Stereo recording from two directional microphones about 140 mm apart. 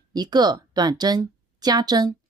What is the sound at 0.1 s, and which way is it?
Speech, 30° right (ahead or behind).